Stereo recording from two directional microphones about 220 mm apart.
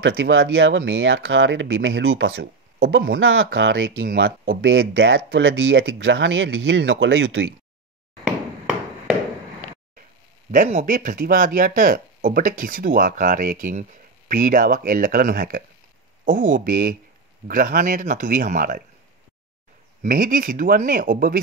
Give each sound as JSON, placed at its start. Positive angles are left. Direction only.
{"t": 0.0, "sound": "speech", "side_deg": -60}
{"t": 10.5, "sound": "speech", "side_deg": -35}
{"t": 20.0, "sound": "speech", "side_deg": -40}